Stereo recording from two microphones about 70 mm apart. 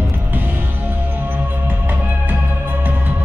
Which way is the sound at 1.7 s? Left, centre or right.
Right.